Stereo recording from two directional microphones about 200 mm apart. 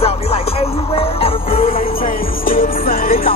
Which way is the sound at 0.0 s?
30° left (ahead or behind).